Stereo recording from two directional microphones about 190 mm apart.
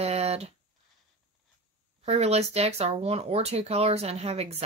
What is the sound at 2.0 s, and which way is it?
Speech, 35° right (ahead or behind).